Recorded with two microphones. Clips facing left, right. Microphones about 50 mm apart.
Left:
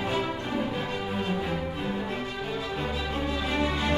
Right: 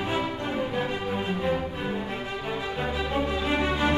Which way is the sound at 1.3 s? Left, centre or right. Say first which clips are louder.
Right 3 dB; centre.